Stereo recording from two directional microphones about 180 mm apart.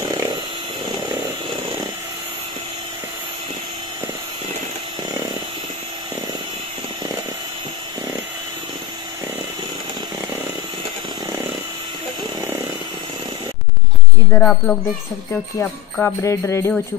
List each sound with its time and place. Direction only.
14.3 s music: 5° left (ahead or behind)